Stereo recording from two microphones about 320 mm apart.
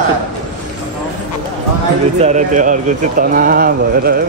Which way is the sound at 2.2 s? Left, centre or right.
Right.